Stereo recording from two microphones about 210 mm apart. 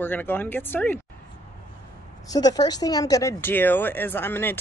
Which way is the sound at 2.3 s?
20° left (ahead or behind).